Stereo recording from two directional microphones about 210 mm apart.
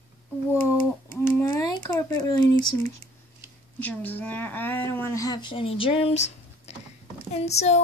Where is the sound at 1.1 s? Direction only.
15° left (ahead or behind).